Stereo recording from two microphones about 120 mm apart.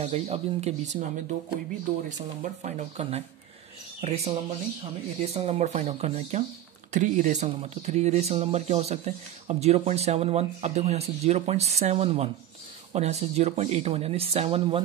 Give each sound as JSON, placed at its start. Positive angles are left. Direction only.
{"t": 0.0, "sound": "speech", "side_deg": -65}
{"t": 2.4, "sound": "speech", "side_deg": -90}
{"t": 6.9, "sound": "speech", "side_deg": -90}